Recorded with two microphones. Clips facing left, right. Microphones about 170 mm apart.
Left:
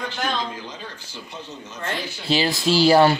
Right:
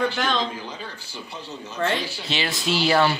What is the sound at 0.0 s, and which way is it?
Speech, 90° right.